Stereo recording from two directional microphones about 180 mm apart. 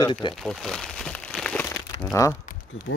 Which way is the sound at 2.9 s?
90° left.